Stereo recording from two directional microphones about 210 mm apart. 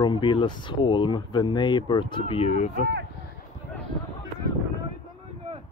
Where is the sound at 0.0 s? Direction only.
20° left (ahead or behind).